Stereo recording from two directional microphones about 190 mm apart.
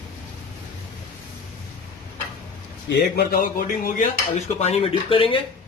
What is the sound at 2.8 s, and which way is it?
Dishes, 60° left (ahead or behind).